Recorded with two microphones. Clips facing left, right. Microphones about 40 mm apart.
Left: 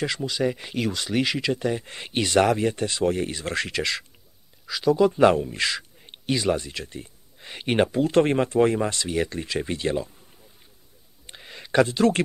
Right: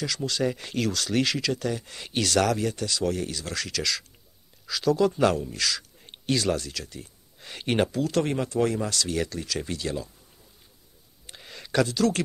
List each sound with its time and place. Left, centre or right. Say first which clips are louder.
0.2 s speech: left 2 dB; centre; by 4.0 s left
4.6 s speech: left 3 dB; centre
5.9 s speech: even; centre; by 7.1 s left
7.3 s speech: left 3 dB; centre
11.2 s a sound: left 2 dB; centre